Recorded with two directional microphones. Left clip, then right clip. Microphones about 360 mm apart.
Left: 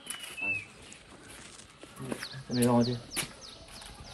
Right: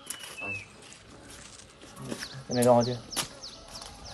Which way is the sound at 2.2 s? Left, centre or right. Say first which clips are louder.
Right 3 dB; right.